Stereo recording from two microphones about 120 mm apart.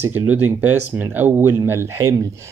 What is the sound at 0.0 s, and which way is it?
Speech, 15° right (ahead or behind).